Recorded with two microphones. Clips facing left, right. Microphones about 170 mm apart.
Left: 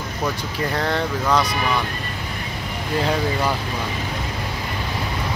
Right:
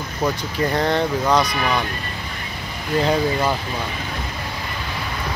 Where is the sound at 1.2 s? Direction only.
15° right (ahead or behind).